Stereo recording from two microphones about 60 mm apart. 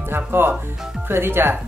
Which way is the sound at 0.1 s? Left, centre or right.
Right.